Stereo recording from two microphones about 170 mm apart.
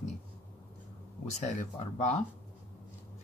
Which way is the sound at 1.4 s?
45° left (ahead or behind).